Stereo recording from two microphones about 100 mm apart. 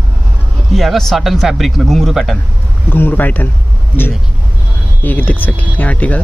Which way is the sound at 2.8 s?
20° left (ahead or behind).